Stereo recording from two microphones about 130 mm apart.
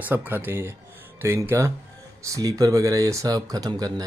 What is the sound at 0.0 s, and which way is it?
Speech, 15° right (ahead or behind).